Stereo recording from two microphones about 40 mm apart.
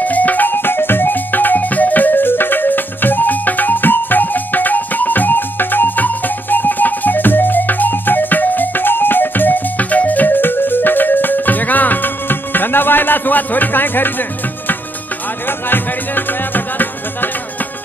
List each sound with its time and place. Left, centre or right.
0.0 s music: left
15.4 s music: left